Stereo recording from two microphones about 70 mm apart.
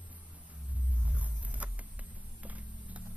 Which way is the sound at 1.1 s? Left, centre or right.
Right.